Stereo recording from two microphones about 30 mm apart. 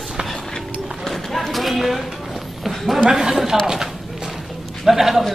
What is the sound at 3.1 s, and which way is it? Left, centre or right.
Speech, centre.